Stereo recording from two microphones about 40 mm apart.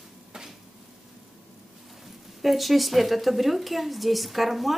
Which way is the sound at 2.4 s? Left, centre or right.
Centre.